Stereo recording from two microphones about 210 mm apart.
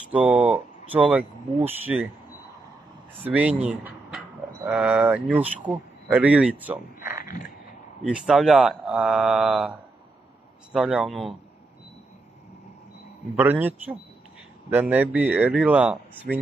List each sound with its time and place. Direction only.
0.1 s speech: 5° right (ahead or behind)
3.3 s speech: 5° right (ahead or behind)
7.2 s a sound: 40° left (ahead or behind)
8.0 s speech: 5° right (ahead or behind)
13.4 s speech: 10° right (ahead or behind)